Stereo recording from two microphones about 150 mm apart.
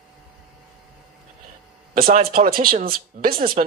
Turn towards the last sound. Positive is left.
turn(degrees=-75)  # may be behind; listen again after turning